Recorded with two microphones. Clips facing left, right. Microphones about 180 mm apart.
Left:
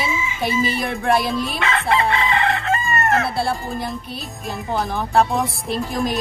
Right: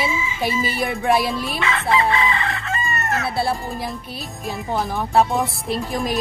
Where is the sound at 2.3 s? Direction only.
60° left (ahead or behind).